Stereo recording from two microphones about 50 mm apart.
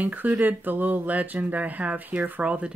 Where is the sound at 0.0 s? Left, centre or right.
Right.